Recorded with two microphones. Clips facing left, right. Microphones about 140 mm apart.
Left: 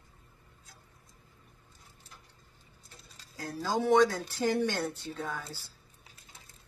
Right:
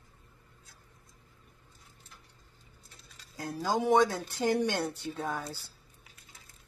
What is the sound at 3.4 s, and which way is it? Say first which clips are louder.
Speech: right 1 dB; 15° right (ahead or behind).